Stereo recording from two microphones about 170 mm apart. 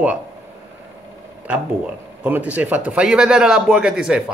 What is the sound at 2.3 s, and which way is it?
Speech, 10° right (ahead or behind).